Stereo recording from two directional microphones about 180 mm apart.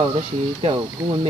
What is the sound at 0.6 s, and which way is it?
Speech, 25° right (ahead or behind).